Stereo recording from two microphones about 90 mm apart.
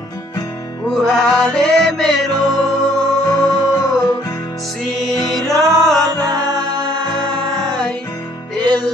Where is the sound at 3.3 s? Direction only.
40° left (ahead or behind).